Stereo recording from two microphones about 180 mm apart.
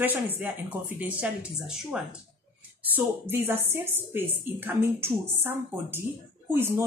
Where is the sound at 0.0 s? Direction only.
10° right (ahead or behind).